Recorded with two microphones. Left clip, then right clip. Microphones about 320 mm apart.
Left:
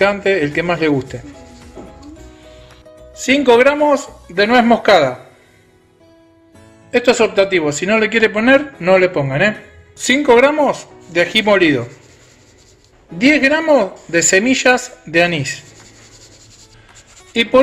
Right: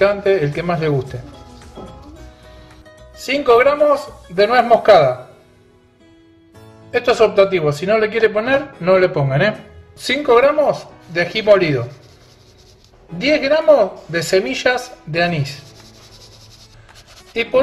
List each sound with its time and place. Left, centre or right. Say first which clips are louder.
0.0 s speech: even; left
3.2 s speech: left 2 dB; left
6.9 s speech: left 1 dB; left
13.2 s speech: left 2 dB; left